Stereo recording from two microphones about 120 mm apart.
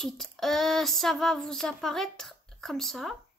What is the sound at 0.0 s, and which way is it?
Speech, centre (ahead or behind).